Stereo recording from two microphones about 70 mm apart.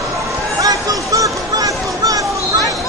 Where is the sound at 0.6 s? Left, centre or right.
Right.